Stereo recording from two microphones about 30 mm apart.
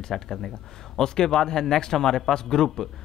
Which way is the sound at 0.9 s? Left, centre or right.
Left.